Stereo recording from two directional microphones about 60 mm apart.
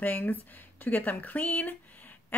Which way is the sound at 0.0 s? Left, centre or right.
Left.